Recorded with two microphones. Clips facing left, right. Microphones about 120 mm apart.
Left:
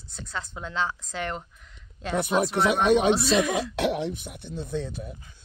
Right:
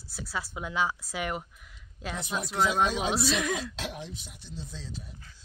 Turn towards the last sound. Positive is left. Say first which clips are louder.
# left 11 dB
turn(degrees=55)  # may be behind; listen again after turning